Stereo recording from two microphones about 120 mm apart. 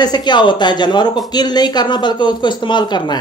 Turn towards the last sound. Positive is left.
turn(degrees=35)  # may be behind; listen again after turning